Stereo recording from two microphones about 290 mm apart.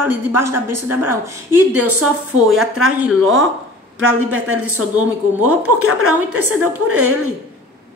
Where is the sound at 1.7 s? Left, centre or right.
Right.